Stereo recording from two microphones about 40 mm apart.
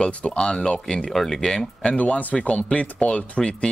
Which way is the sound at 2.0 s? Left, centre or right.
Left.